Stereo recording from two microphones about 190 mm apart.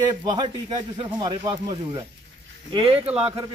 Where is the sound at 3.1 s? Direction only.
5° right (ahead or behind).